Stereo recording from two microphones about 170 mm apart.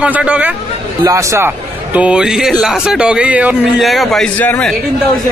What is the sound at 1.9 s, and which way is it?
Speech, 5° right (ahead or behind).